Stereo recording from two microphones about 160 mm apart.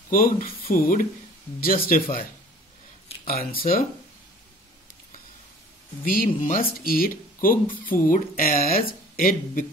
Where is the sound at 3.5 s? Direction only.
65° left (ahead or behind).